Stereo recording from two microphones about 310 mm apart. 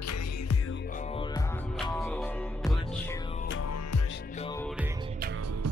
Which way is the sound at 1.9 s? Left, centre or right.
Centre.